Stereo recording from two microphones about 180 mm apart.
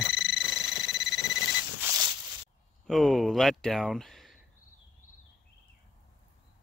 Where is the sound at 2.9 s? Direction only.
Centre (ahead or behind).